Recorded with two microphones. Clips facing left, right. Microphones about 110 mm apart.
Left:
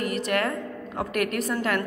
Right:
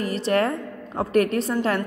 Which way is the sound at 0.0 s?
30° right (ahead or behind).